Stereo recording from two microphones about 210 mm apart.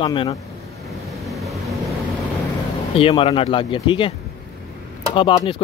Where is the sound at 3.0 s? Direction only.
25° left (ahead or behind).